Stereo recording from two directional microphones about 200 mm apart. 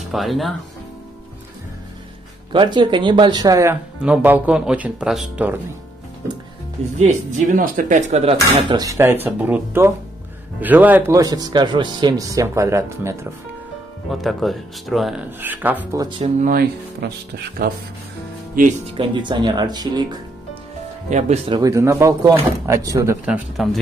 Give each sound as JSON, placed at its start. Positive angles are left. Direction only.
{"t": 0.0, "sound": "speech", "side_deg": 0}
{"t": 2.5, "sound": "speech", "side_deg": -25}
{"t": 7.0, "sound": "speech", "side_deg": -40}
{"t": 14.2, "sound": "speech", "side_deg": 0}
{"t": 16.0, "sound": "speech", "side_deg": -25}
{"t": 16.3, "sound": "speech", "side_deg": -45}
{"t": 17.0, "sound": "speech", "side_deg": -55}
{"t": 18.9, "sound": "speech", "side_deg": -25}
{"t": 21.1, "sound": "speech", "side_deg": -35}
{"t": 21.5, "sound": "speech", "side_deg": -15}
{"t": 23.2, "sound": "speech", "side_deg": 0}